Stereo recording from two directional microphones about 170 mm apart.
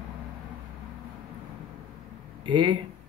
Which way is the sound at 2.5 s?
25° right (ahead or behind).